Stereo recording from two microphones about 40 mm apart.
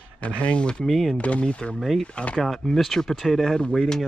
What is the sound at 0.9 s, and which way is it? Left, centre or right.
Speech, centre.